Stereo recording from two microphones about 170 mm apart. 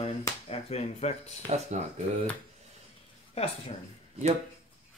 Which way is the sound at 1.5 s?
40° right (ahead or behind).